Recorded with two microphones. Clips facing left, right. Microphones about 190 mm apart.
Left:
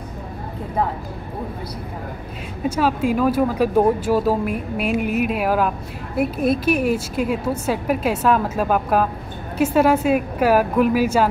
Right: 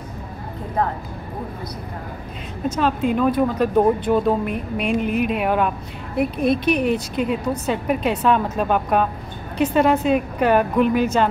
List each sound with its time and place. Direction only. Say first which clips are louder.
2.6 s speech: left 1 dB; 5° left (ahead or behind)